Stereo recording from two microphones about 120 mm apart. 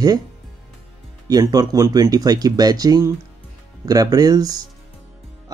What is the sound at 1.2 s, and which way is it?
A man's voice, 30° right (ahead or behind).